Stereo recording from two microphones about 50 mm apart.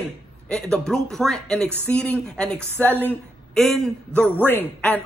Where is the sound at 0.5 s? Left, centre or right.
Centre.